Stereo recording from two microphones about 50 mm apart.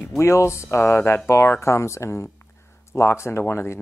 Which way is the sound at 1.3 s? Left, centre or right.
Left.